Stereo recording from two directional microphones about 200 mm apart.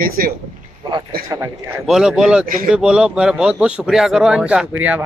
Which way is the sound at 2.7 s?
5° right (ahead or behind).